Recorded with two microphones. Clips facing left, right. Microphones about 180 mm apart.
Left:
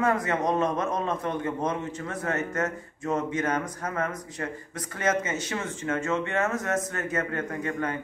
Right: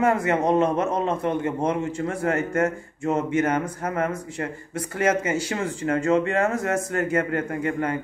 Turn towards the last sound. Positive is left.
turn(degrees=-30)  # may be behind; listen again after turning